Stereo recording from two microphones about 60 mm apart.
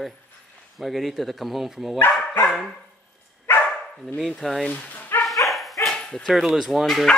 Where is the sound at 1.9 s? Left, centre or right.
Left.